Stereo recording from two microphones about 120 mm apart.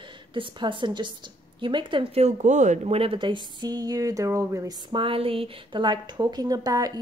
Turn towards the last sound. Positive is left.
turn(degrees=-30)  # may be behind; listen again after turning